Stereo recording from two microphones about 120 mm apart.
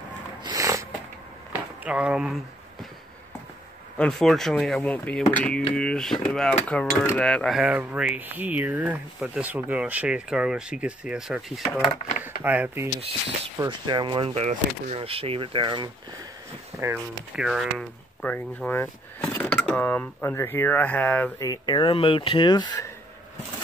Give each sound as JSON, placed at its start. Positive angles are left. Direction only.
{"t": 0.6, "sound": "sniff", "side_deg": -25}
{"t": 1.5, "sound": "a sound", "side_deg": -10}
{"t": 4.0, "sound": "speech", "side_deg": 0}
{"t": 7.6, "sound": "speech", "side_deg": -10}
{"t": 12.4, "sound": "speech", "side_deg": -15}
{"t": 13.6, "sound": "speech", "side_deg": -35}
{"t": 14.3, "sound": "speech", "side_deg": -75}
{"t": 15.0, "sound": "speech", "side_deg": -50}
{"t": 16.7, "sound": "speech", "side_deg": -20}
{"t": 17.4, "sound": "speech", "side_deg": 0}
{"t": 18.2, "sound": "speech", "side_deg": 15}
{"t": 19.4, "sound": "speech", "side_deg": 5}
{"t": 21.4, "sound": "speech", "side_deg": 35}
{"t": 21.9, "sound": "speech", "side_deg": 50}